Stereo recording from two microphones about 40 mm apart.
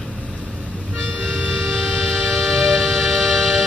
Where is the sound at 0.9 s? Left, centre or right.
Centre.